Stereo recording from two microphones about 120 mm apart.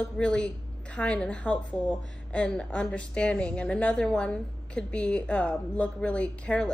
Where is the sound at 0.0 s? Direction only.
10° left (ahead or behind).